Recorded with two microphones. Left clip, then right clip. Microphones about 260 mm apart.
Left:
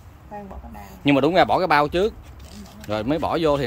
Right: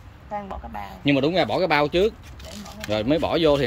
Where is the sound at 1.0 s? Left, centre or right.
Centre.